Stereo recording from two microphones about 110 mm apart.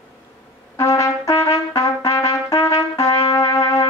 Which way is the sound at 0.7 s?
30° left (ahead or behind).